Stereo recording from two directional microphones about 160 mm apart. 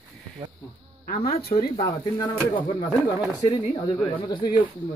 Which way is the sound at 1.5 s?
40° left (ahead or behind).